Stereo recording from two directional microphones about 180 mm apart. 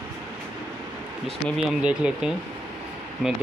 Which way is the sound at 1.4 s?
5° right (ahead or behind).